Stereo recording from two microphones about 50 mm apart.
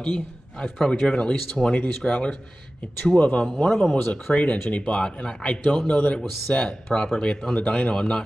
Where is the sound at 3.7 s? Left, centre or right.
Centre.